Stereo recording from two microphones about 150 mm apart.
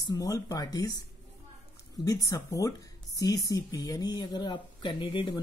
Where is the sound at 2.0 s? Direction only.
25° left (ahead or behind).